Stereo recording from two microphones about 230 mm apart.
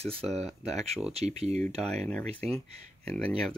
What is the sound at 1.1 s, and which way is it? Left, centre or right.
Speech, right.